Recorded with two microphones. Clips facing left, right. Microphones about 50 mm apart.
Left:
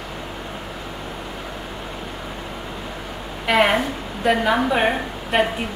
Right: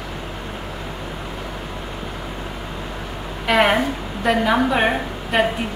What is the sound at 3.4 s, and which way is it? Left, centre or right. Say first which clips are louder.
A woman's voice: right 1 dB; centre.